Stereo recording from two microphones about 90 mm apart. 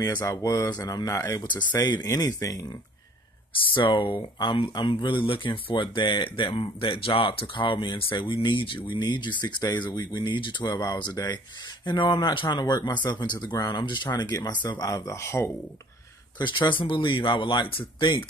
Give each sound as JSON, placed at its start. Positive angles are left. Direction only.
{"t": 0.0, "sound": "speech", "side_deg": 40}
{"t": 1.8, "sound": "speech", "side_deg": 40}
{"t": 3.7, "sound": "speech", "side_deg": 60}
{"t": 16.3, "sound": "speech", "side_deg": 60}